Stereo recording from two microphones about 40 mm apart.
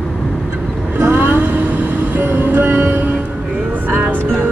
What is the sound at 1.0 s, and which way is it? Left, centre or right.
Music, right.